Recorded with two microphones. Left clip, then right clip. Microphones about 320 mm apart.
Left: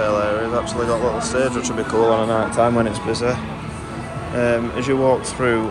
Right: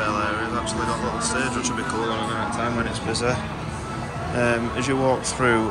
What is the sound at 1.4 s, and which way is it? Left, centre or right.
Speech, centre.